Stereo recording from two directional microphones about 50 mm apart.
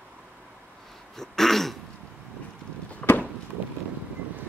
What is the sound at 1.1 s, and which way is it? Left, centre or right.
Throat clearing, centre.